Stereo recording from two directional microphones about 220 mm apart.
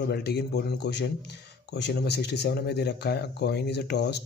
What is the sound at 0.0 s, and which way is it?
Speech, 45° left (ahead or behind).